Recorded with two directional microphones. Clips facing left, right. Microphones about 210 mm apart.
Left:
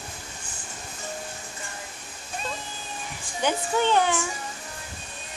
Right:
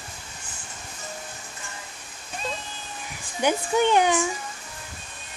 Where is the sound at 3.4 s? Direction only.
15° right (ahead or behind).